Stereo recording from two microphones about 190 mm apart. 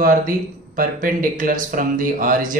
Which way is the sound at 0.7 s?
45° right (ahead or behind).